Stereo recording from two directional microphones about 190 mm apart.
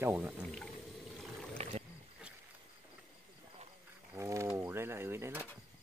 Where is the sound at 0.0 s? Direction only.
5° right (ahead or behind).